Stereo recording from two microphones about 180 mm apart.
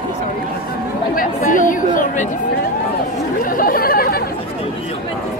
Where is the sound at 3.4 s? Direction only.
50° left (ahead or behind).